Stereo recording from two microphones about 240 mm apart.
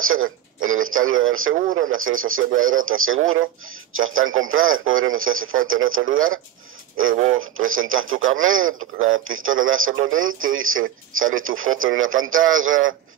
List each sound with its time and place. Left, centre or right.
0.0 s speech: right
1.5 s speech: right
1.8 s speech: right